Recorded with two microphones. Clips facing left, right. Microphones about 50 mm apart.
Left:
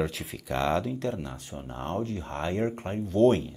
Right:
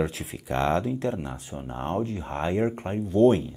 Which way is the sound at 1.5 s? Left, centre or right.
Centre.